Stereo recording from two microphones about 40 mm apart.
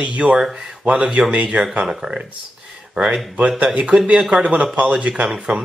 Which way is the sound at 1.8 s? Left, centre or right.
Centre.